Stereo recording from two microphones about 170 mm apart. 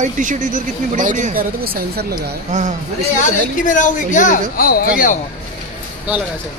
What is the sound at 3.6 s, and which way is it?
Speech, 50° left (ahead or behind).